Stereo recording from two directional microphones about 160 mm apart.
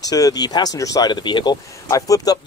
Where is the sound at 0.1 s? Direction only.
25° left (ahead or behind).